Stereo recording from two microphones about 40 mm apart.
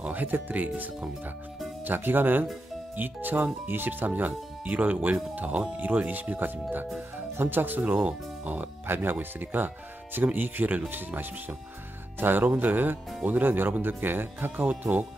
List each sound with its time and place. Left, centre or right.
0.0 s speech: right
1.9 s speech: right
7.8 s speech: right
8.8 s speech: right
9.2 s speech: right
14.7 s speech: right